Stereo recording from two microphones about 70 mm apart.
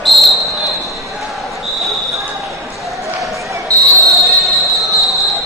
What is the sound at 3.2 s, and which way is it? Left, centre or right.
Basketball bounce, right.